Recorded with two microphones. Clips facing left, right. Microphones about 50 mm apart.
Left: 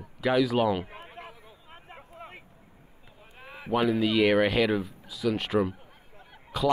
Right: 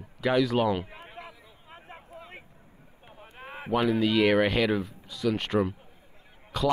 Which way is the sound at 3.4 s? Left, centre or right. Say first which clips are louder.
Right 4 dB; right.